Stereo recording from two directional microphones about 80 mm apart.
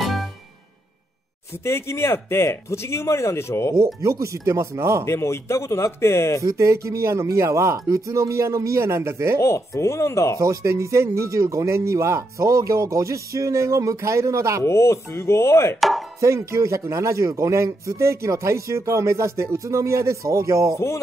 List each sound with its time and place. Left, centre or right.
0.0 s music: centre
1.6 s speech: left
3.7 s speech: right
5.0 s speech: left
6.4 s speech: right
9.4 s speech: left
10.4 s speech: right
14.6 s speech: left
16.2 s speech: right